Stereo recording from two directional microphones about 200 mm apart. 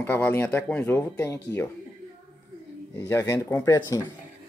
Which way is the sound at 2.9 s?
15° left (ahead or behind).